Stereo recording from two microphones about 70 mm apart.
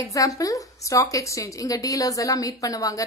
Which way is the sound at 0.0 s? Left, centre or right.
Left.